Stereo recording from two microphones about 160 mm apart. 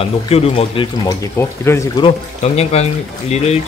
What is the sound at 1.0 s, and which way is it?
Speech, 15° left (ahead or behind).